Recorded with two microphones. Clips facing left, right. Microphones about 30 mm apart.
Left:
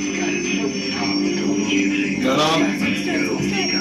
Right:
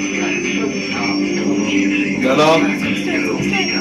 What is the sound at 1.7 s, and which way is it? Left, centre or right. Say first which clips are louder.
Music: right 3 dB; centre.